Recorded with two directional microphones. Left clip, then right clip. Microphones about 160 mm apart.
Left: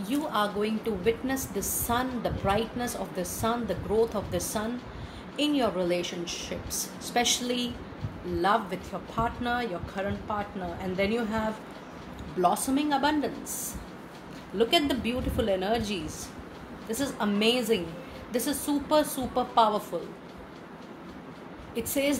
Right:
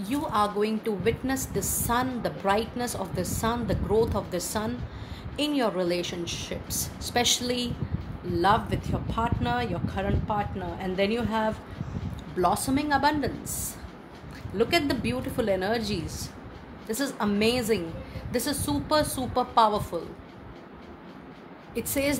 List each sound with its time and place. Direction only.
0.1 s a woman's voice: 45° right (ahead or behind)
12.4 s a woman's voice: 40° right (ahead or behind)
14.6 s a woman's voice: 40° right (ahead or behind)
21.7 s a woman's voice: 45° right (ahead or behind)